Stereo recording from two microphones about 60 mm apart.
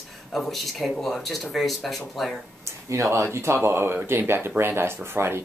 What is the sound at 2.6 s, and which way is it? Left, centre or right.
Speech, right.